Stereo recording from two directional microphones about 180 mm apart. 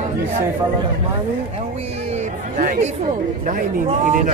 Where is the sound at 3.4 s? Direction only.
50° right (ahead or behind).